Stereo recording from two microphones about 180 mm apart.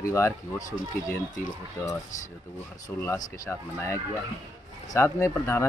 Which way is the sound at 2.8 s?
15° left (ahead or behind).